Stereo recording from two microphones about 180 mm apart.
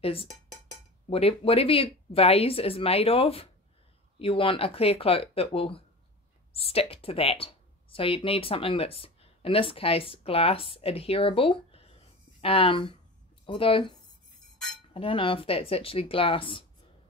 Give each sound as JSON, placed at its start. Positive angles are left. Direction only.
{"t": 0.0, "sound": "speech", "side_deg": 30}
{"t": 15.0, "sound": "speech", "side_deg": 30}